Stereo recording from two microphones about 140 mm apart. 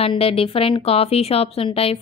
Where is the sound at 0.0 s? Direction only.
45° left (ahead or behind).